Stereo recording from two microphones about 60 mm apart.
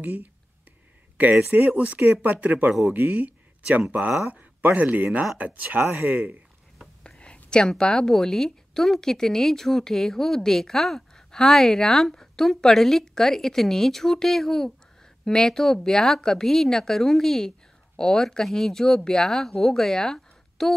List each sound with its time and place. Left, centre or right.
0.0 s speech: right
1.7 s speech: right
4.3 s a sound: right
4.7 s speech: right
7.0 s whispering: centre
7.4 s a woman's voice: centre